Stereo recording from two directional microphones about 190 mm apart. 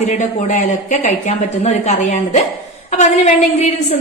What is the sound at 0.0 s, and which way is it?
A woman's voice, 35° left (ahead or behind).